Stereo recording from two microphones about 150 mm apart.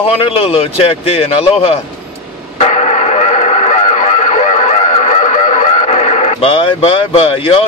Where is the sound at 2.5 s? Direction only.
45° left (ahead or behind).